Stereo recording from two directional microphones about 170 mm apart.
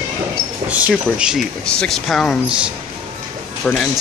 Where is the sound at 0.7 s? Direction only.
10° right (ahead or behind).